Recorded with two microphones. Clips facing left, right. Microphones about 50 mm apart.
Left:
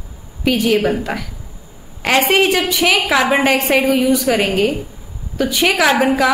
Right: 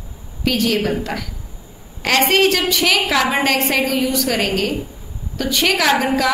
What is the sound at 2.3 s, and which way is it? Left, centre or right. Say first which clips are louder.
A woman's voice: left 1 dB; centre.